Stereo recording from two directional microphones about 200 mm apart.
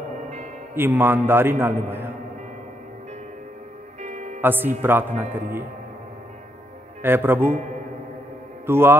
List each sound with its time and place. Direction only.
0.7 s a man's voice: 10° right (ahead or behind)
4.0 s music: 35° right (ahead or behind)
4.4 s a man's voice: 10° right (ahead or behind)
7.0 s a man's voice: 10° right (ahead or behind)
8.6 s a man's voice: 10° right (ahead or behind)